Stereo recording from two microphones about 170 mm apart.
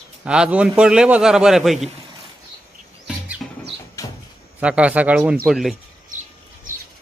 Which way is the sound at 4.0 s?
20° left (ahead or behind).